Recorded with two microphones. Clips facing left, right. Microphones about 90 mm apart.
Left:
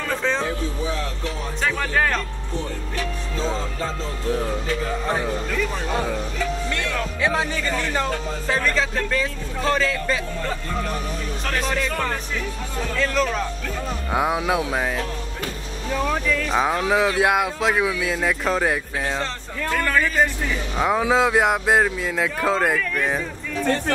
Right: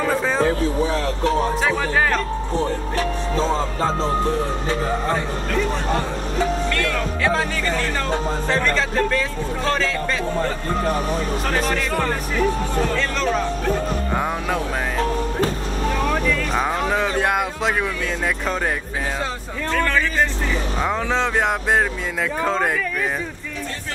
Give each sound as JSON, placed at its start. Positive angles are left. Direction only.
{"t": 0.0, "sound": "a sound", "side_deg": -10}
{"t": 0.4, "sound": "speech", "side_deg": -50}
{"t": 1.6, "sound": "speech", "side_deg": -5}
{"t": 2.5, "sound": "speech", "side_deg": -40}
{"t": 6.7, "sound": "speech", "side_deg": 20}
{"t": 8.5, "sound": "speech", "side_deg": 5}
{"t": 10.3, "sound": "speech", "side_deg": -40}
{"t": 11.6, "sound": "speech", "side_deg": 0}
{"t": 16.1, "sound": "speech", "side_deg": 0}
{"t": 19.7, "sound": "speech", "side_deg": 10}